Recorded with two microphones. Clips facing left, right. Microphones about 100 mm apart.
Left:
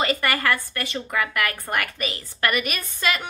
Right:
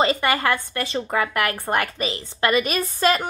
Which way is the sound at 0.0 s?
25° right (ahead or behind).